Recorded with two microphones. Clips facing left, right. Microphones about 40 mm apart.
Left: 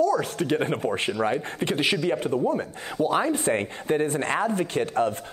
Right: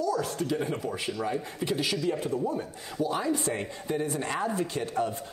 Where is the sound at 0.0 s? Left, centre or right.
Left.